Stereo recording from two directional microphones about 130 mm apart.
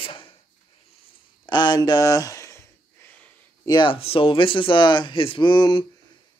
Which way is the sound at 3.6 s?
35° left (ahead or behind).